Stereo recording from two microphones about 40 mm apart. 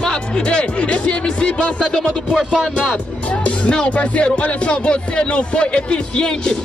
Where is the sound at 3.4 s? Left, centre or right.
Left.